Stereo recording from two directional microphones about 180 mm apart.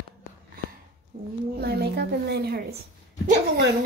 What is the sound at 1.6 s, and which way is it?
Speech, 65° right (ahead or behind).